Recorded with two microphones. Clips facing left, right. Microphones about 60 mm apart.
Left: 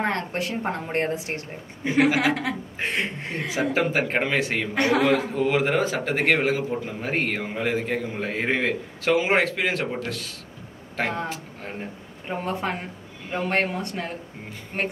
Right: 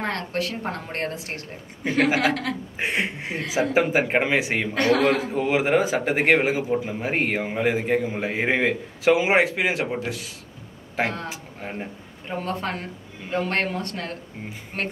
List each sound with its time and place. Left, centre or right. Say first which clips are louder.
0.0 s a woman's voice: left 1 dB; left
2.1 s speech: even; centre
2.8 s a man's voice: right 2 dB; centre
4.7 s a woman's voice: right 1 dB; centre
5.3 s a man's voice: right 1 dB; centre
12.3 s speech: even; centre